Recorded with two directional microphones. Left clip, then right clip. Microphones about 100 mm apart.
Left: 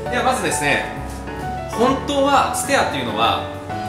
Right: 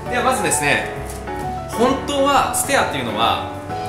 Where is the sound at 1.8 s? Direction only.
10° right (ahead or behind).